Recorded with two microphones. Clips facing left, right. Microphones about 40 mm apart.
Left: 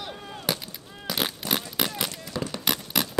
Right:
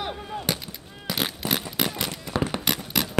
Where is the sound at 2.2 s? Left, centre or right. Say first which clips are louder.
Right 5 dB; right.